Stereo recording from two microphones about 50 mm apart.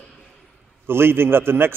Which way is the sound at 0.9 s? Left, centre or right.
Right.